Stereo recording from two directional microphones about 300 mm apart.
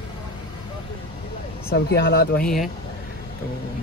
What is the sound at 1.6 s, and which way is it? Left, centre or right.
Speech, left.